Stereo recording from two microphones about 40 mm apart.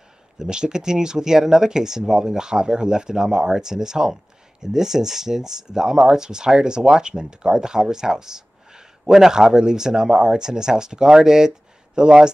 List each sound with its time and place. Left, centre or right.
0.4 s speech: centre